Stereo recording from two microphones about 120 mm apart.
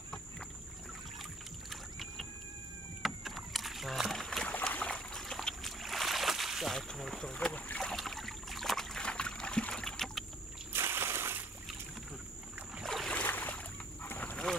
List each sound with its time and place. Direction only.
1.7 s boat: centre (ahead or behind)
3.0 s rowboat: centre (ahead or behind)
4.5 s trickle: 10° left (ahead or behind)
7.9 s boat: centre (ahead or behind)
10.7 s splash: 20° right (ahead or behind)
12.8 s boat: 5° left (ahead or behind)